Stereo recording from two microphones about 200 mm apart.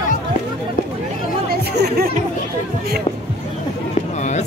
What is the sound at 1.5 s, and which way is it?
Chatter, 50° right (ahead or behind).